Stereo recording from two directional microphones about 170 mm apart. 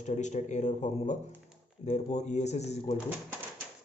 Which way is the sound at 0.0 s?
45° left (ahead or behind).